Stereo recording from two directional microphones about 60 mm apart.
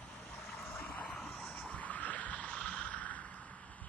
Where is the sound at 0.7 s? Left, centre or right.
Left.